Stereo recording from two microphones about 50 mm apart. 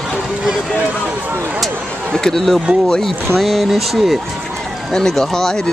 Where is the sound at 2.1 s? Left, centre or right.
Centre.